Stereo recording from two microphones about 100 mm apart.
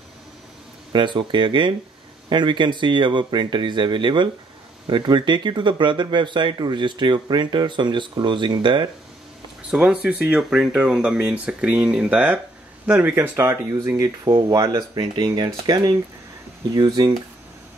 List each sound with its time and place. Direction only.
0.9 s speech: 55° right (ahead or behind)
9.7 s speech: 10° right (ahead or behind); by 17.1 s 40° right (ahead or behind)